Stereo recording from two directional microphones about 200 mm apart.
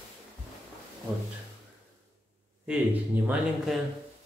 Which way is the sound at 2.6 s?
10° right (ahead or behind).